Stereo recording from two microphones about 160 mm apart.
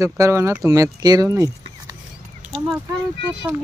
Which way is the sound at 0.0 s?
15° right (ahead or behind).